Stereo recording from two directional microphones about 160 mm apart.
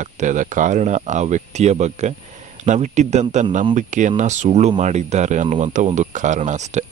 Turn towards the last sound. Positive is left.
turn(degrees=-45)  # may be behind; listen again after turning